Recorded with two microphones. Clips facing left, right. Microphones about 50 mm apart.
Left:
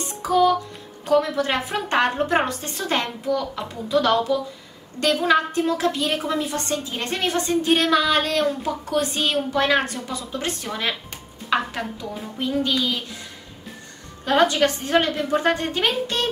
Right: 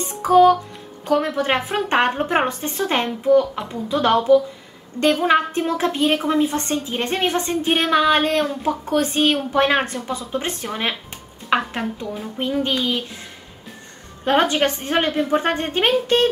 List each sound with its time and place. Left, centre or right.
0.2 s music: right
1.1 s a woman's voice: right
3.9 s music: right
5.0 s a woman's voice: right
11.5 s music: right
14.2 s a woman's voice: right
15.4 s music: right